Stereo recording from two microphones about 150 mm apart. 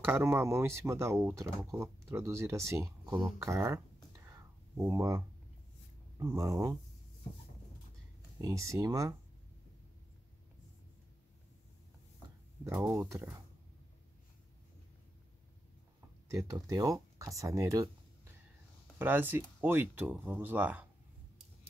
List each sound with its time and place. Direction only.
0.0 s speech: 15° right (ahead or behind)
8.4 s speech: 20° right (ahead or behind)
12.6 s speech: 20° right (ahead or behind)
16.3 s speech: 20° right (ahead or behind)
18.9 s speech: 10° right (ahead or behind)